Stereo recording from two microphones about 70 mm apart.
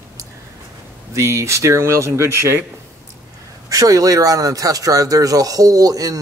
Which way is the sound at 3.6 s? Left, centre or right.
Right.